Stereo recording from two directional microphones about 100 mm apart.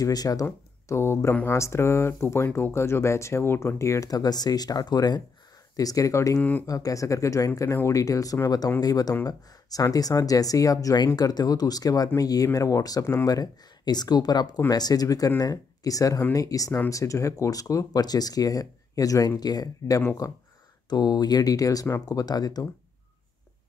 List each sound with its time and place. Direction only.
0.0 s speech: 40° left (ahead or behind)
0.8 s speech: 30° left (ahead or behind)